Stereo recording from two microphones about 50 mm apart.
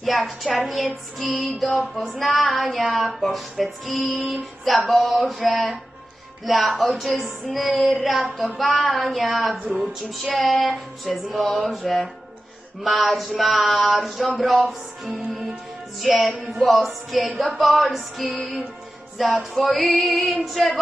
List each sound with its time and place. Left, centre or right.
0.0 s music: centre